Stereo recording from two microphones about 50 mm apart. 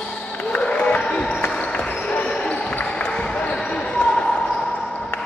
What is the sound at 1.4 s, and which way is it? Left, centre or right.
Basketball bounce, left.